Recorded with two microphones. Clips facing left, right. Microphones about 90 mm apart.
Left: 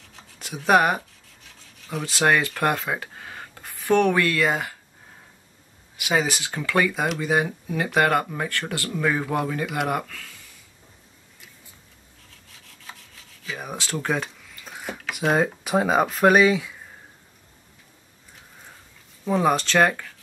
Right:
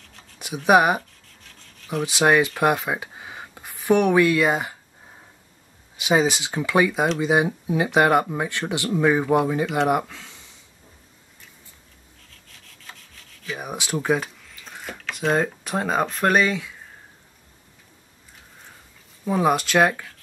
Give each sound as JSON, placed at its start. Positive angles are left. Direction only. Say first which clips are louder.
{"t": 0.7, "sound": "speech", "louder": "right 2 dB", "side_deg": -15}
{"t": 1.4, "sound": "rub", "louder": "right 1 dB", "side_deg": 5}
{"t": 2.0, "sound": "speech", "louder": "right 2 dB", "side_deg": -15}
{"t": 5.9, "sound": "speech", "louder": "right 4 dB", "side_deg": -20}
{"t": 12.6, "sound": "rub", "louder": "left 2 dB", "side_deg": 5}
{"t": 13.6, "sound": "speech", "louder": "right 2 dB", "side_deg": -15}
{"t": 19.2, "sound": "speech", "louder": "even", "side_deg": -5}